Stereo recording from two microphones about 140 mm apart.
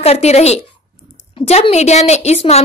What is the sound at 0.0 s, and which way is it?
A woman's voice, 50° left (ahead or behind).